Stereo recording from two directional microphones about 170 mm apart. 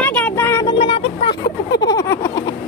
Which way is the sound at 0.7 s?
30° left (ahead or behind).